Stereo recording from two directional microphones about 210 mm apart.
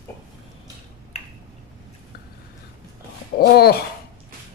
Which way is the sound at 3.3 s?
50° left (ahead or behind).